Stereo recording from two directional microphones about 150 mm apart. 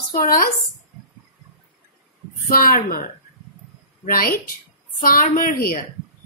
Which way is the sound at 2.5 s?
75° left (ahead or behind).